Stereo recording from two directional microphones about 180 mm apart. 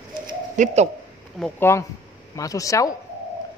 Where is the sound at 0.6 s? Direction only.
40° right (ahead or behind).